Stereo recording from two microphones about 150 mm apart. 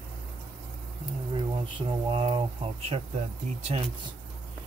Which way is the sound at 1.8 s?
35° right (ahead or behind).